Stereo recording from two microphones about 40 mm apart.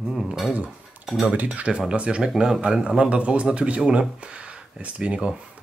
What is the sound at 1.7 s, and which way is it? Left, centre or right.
Speech, right.